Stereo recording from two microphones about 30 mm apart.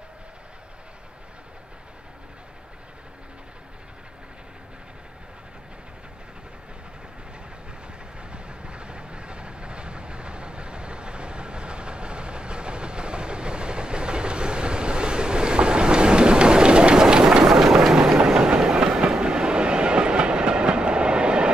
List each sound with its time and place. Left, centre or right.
8.2 s train: right
17.0 s train: right
17.9 s train: right